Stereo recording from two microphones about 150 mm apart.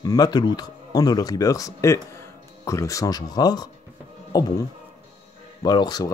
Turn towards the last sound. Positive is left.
turn(degrees=25)  # may be behind; listen again after turning